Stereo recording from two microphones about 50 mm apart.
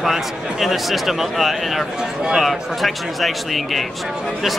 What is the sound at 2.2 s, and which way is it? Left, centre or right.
Speech, centre.